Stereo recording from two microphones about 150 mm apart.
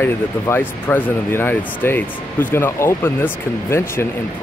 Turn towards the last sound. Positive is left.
turn(degrees=15)  # may be behind; listen again after turning